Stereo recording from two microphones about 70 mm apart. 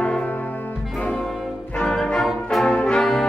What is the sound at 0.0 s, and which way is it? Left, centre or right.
Music, centre.